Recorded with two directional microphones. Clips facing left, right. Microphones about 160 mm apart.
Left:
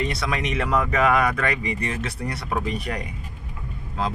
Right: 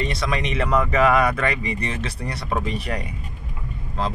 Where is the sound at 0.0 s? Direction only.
5° left (ahead or behind).